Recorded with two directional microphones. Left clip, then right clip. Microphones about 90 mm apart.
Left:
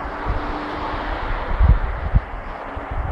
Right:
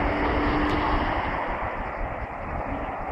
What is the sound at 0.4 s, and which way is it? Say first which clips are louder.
Vehicle: right 2 dB; 10° right (ahead or behind).